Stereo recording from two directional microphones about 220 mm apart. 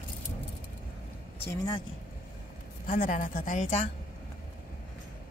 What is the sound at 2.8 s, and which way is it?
A woman's voice, 40° left (ahead or behind).